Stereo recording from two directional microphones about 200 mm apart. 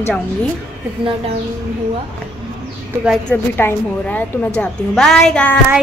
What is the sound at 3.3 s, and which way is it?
A woman's voice, 10° left (ahead or behind).